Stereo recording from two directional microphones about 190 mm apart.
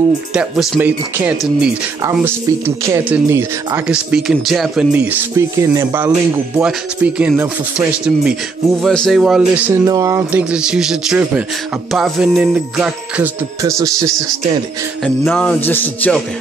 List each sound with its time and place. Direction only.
0.3 s speech: 5° right (ahead or behind)
9.8 s speech: 15° right (ahead or behind)
11.9 s music: centre (ahead or behind)
13.6 s speech: 15° right (ahead or behind)
15.0 s a man's voice: 5° left (ahead or behind)